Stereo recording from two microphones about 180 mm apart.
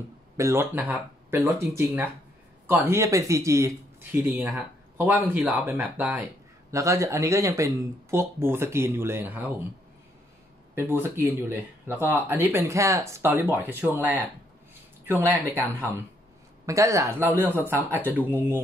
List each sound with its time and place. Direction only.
0.4 s speech: 15° right (ahead or behind)
4.3 s speech: centre (ahead or behind)
10.7 s speech: 15° right (ahead or behind)
16.6 s speech: 15° right (ahead or behind)